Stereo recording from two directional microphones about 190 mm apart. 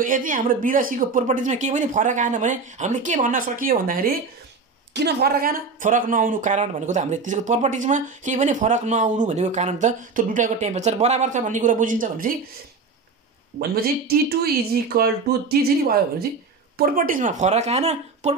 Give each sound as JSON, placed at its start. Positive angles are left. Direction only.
{"t": 0.0, "sound": "speech", "side_deg": -45}
{"t": 4.9, "sound": "speech", "side_deg": -60}
{"t": 13.6, "sound": "speech", "side_deg": -55}
{"t": 16.7, "sound": "speech", "side_deg": -50}